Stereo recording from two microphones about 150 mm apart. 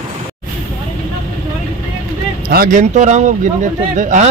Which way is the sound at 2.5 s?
70° right (ahead or behind).